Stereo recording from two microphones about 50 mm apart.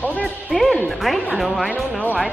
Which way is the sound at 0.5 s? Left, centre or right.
Centre.